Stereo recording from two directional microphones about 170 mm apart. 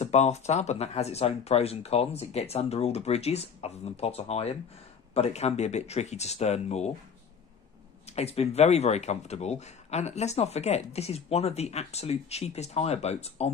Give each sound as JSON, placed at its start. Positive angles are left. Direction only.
{"t": 0.0, "sound": "speech", "side_deg": 40}
{"t": 8.1, "sound": "speech", "side_deg": 40}